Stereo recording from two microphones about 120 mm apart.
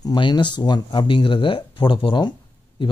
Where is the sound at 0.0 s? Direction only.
40° left (ahead or behind).